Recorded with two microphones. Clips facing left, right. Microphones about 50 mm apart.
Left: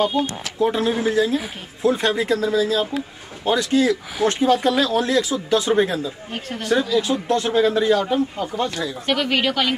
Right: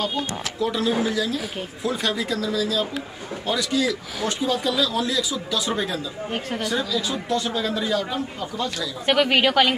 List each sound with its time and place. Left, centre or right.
0.0 s speech: left
9.0 s speech: centre